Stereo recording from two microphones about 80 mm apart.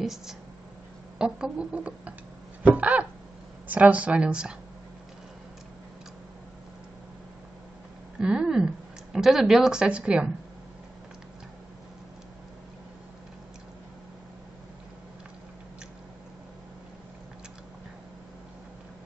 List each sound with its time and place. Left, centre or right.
0.0 s speech: centre
2.6 s a sound: centre
3.6 s speech: centre
8.2 s speech: centre